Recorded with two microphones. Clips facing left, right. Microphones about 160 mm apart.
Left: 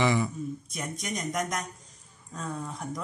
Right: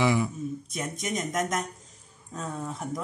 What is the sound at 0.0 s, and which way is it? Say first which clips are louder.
Speech: right 1 dB; 5° right (ahead or behind).